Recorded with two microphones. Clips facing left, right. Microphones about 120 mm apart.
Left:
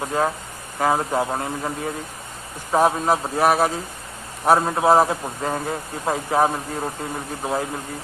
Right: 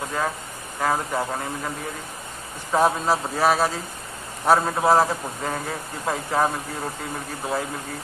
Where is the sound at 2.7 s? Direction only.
15° left (ahead or behind).